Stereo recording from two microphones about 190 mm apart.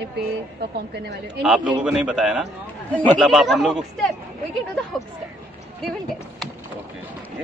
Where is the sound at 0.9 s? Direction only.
60° right (ahead or behind).